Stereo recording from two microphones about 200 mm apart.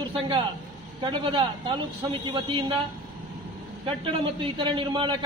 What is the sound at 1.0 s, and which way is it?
A man's voice, 25° right (ahead or behind).